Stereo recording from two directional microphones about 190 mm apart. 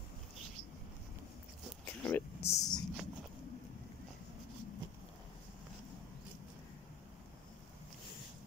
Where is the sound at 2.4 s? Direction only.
35° left (ahead or behind).